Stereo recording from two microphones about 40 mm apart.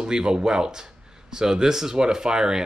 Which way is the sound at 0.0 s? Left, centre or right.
Centre.